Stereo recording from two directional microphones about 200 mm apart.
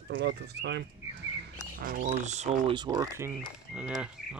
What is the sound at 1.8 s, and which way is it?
Speech, 45° right (ahead or behind).